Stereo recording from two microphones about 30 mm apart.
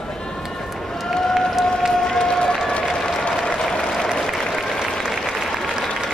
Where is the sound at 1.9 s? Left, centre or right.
Left.